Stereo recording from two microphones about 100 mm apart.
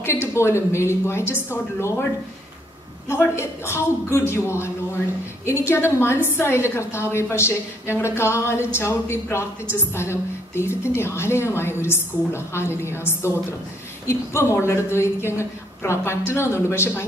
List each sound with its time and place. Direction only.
0.0 s a woman's voice: 25° left (ahead or behind)
3.1 s a woman's voice: 25° left (ahead or behind)